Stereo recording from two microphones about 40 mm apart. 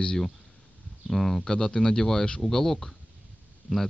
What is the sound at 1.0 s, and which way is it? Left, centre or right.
Speech, centre.